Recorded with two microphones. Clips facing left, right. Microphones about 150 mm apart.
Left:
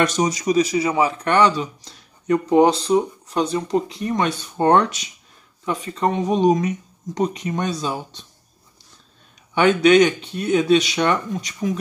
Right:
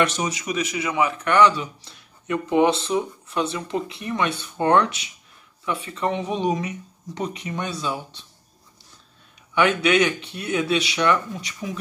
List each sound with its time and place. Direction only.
0.0 s speech: 40° left (ahead or behind)
9.5 s speech: 35° left (ahead or behind)